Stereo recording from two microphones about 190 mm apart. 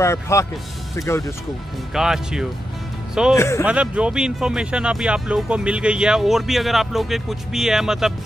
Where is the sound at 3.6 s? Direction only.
5° right (ahead or behind).